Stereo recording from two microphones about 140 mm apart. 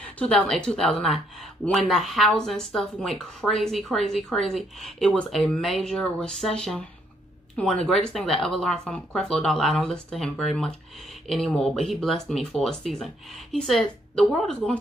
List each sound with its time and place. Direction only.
0.2 s speech: 10° left (ahead or behind)